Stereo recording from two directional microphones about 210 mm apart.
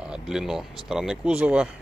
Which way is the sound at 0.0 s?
5° right (ahead or behind).